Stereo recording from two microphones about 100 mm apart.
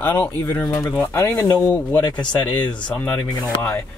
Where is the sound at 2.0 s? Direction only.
45° left (ahead or behind).